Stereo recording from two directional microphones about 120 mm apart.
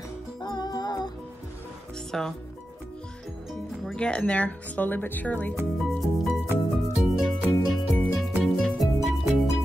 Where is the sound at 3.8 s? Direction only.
5° left (ahead or behind).